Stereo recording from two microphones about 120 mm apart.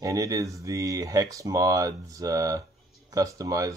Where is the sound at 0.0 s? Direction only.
30° right (ahead or behind).